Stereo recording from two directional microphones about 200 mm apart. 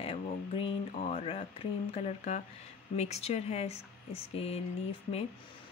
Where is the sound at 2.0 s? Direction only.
35° left (ahead or behind).